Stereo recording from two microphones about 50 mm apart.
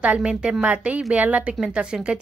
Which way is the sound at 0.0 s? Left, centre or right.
Right.